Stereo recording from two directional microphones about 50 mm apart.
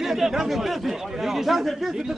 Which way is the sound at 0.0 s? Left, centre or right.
Centre.